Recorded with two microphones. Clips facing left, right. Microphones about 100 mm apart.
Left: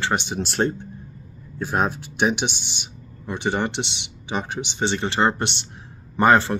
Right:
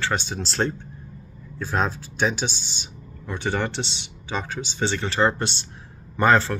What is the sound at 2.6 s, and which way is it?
Speech, 60° left (ahead or behind).